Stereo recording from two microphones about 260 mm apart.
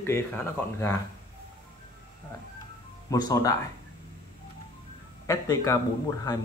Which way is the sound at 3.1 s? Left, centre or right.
Centre.